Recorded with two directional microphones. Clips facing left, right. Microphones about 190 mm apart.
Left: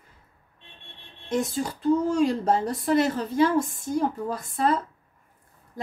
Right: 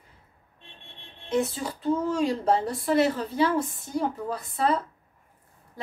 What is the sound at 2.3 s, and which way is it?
Speech, 45° left (ahead or behind).